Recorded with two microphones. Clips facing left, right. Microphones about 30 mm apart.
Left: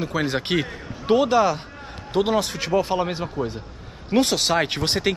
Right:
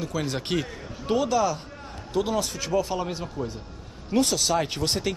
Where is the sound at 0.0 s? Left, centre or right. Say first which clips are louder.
Left 5 dB; left.